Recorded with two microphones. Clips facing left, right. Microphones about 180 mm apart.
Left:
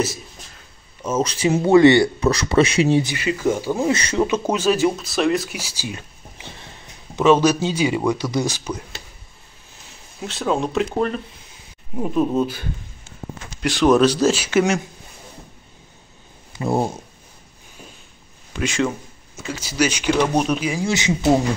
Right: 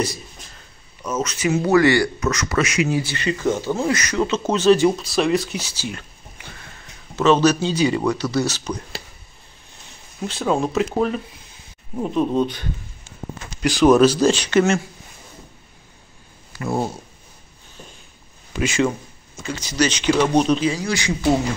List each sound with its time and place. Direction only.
1.0 s speech: 30° left (ahead or behind)
3.2 s speech: 10° left (ahead or behind)
3.9 s speech: 30° left (ahead or behind)
4.2 s speech: 10° left (ahead or behind)
7.2 s speech: 10° left (ahead or behind)
9.8 s speech: centre (ahead or behind)
11.9 s speech: 5° left (ahead or behind)
16.5 s speech: 20° left (ahead or behind)
18.6 s speech: centre (ahead or behind)
20.8 s speech: 20° left (ahead or behind)